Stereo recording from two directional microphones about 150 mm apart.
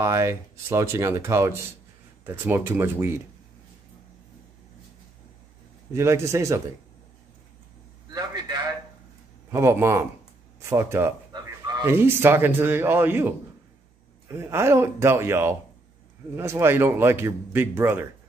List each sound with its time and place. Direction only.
0.0 s a man's voice: 20° right (ahead or behind)
5.9 s speech: 20° right (ahead or behind)
8.1 s a sound: 25° right (ahead or behind)
9.5 s a man's voice: 15° right (ahead or behind)
10.6 s honk: 15° right (ahead or behind)
11.8 s a man's voice: 15° right (ahead or behind)
14.4 s a man's voice: 15° right (ahead or behind)